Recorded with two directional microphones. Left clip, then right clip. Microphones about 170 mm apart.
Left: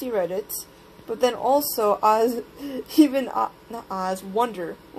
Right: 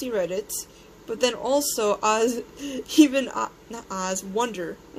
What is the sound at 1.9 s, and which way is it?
Speech, centre (ahead or behind).